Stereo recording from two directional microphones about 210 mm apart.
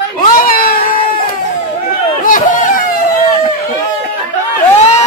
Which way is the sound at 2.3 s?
40° left (ahead or behind).